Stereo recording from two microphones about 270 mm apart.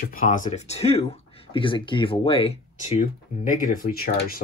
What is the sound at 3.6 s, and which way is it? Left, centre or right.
Speech, left.